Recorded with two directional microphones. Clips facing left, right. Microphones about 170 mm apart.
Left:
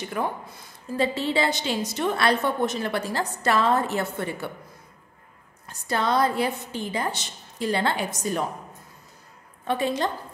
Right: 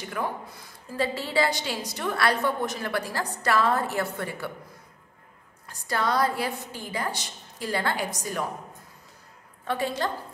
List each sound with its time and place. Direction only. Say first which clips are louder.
0.2 s a woman's voice: left 2 dB; 25° left (ahead or behind)
5.7 s a woman's voice: left 2 dB; 25° left (ahead or behind)
9.7 s a woman's voice: left 3 dB; 20° left (ahead or behind)